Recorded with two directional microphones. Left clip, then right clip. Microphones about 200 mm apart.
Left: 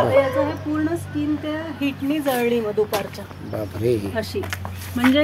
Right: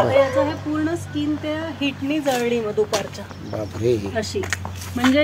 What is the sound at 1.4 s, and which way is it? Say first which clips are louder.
Speech: right 1 dB; 5° right (ahead or behind).